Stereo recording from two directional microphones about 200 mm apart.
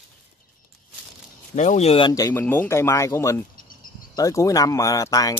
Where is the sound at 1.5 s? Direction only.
35° left (ahead or behind).